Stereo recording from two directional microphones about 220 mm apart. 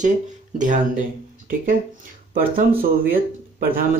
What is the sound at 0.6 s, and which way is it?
Speech, 35° right (ahead or behind).